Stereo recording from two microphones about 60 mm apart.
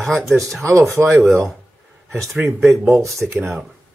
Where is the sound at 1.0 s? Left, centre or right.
Right.